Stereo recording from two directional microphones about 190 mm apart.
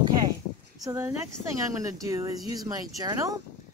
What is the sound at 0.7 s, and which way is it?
A woman's voice, 15° right (ahead or behind).